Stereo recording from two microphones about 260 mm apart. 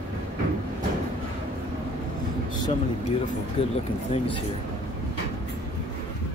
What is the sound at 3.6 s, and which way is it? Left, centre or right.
Speech, left.